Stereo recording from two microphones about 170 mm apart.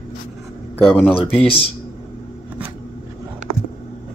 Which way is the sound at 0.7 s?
10° left (ahead or behind).